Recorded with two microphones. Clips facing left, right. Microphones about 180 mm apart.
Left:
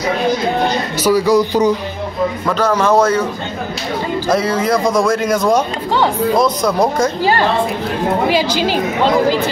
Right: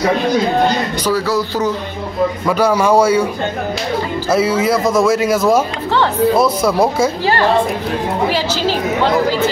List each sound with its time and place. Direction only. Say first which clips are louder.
1.0 s speech: left 7 dB; 15° left (ahead or behind)
2.4 s speech: right 1 dB; 10° right (ahead or behind)
4.3 s speech: right 1 dB; 5° right (ahead or behind)
8.3 s speech: left 2 dB; 15° left (ahead or behind)